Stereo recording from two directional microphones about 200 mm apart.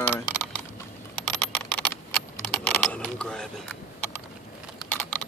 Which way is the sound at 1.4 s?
5° left (ahead or behind).